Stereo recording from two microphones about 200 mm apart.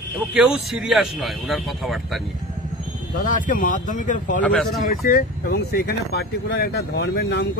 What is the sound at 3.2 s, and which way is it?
Speech, 40° left (ahead or behind).